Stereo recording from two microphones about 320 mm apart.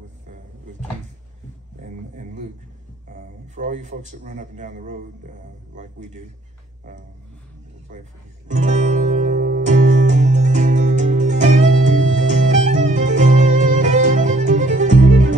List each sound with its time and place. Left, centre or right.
3.1 s a man's voice: right
7.9 s speech: right
8.5 s music: right